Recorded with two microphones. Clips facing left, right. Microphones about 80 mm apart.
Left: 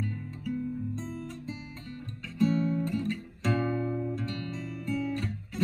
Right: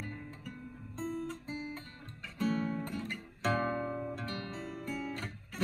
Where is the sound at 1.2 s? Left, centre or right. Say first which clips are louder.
Even; right.